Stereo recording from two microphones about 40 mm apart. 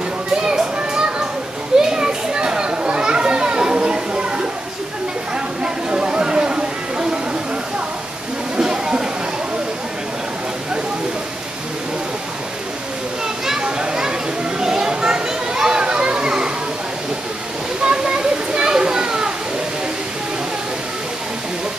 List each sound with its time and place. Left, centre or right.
0.3 s children playing: centre
1.8 s children playing: centre
5.3 s a sound: right
8.5 s a sound: right
13.6 s children playing: right
17.8 s children playing: right